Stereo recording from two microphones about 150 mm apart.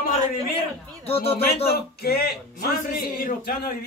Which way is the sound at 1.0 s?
40° left (ahead or behind).